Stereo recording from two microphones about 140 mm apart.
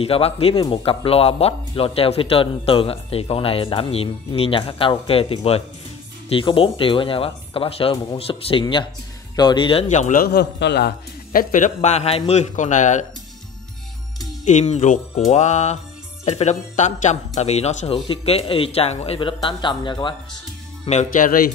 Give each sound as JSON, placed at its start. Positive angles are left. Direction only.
{"t": 0.0, "sound": "speech", "side_deg": 45}
{"t": 9.8, "sound": "speech", "side_deg": 60}
{"t": 11.3, "sound": "speech", "side_deg": 65}
{"t": 14.4, "sound": "speech", "side_deg": 55}
{"t": 19.1, "sound": "speech", "side_deg": 35}
{"t": 20.9, "sound": "speech", "side_deg": 65}